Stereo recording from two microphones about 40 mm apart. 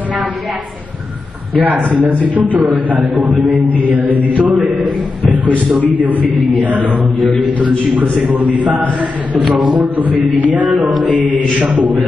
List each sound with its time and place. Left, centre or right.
1.6 s a man's voice: right
5.9 s a man's voice: right
10.6 s a man's voice: right